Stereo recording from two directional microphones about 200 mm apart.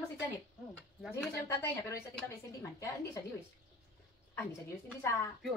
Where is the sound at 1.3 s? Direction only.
15° left (ahead or behind).